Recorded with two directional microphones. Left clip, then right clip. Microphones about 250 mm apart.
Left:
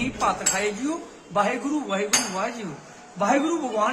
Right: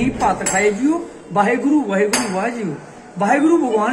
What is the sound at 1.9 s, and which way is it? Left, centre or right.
A man's voice, centre.